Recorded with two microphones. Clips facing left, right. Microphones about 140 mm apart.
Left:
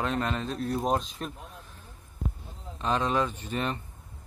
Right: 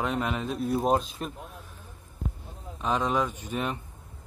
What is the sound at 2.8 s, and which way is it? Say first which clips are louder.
Speech: even; 10° right (ahead or behind).